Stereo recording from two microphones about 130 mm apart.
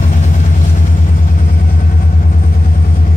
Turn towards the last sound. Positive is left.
turn(degrees=90)